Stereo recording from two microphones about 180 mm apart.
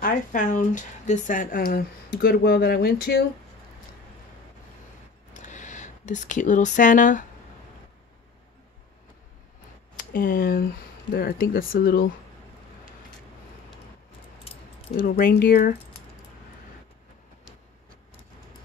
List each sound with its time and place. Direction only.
0.0 s speech: 45° left (ahead or behind)
2.0 s speech: 65° left (ahead or behind)
5.3 s a sound: 45° left (ahead or behind)
9.9 s speech: 55° left (ahead or behind)
14.4 s keys jangling: 30° left (ahead or behind)
15.0 s speech: 55° left (ahead or behind)